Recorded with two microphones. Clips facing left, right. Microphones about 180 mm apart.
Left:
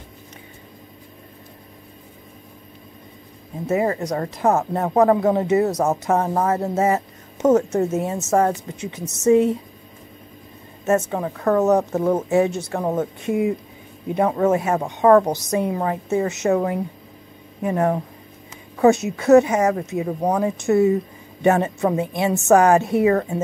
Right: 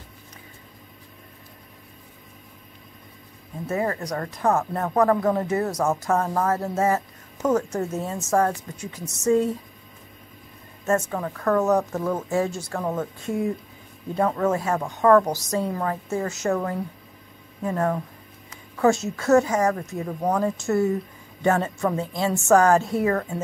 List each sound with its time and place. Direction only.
3.6 s speech: 20° left (ahead or behind)
10.9 s speech: 20° left (ahead or behind)
13.3 s speech: 10° left (ahead or behind)
19.0 s speech: 20° left (ahead or behind)